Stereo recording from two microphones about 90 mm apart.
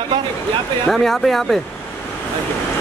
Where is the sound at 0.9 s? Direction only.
5° left (ahead or behind).